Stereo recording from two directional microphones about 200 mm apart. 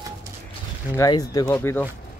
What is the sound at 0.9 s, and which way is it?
Speech, 20° left (ahead or behind).